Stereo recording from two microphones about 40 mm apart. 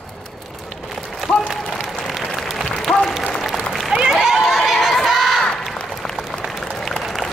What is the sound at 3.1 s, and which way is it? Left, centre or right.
Applause, centre.